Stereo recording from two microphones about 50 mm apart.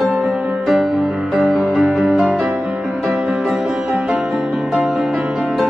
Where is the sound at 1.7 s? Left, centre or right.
Centre.